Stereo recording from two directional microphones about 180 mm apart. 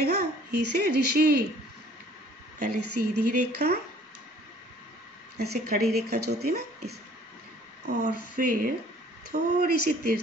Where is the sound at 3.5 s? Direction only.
65° right (ahead or behind).